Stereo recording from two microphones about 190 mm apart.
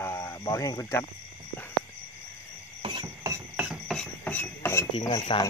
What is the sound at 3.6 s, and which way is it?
Filing, centre (ahead or behind).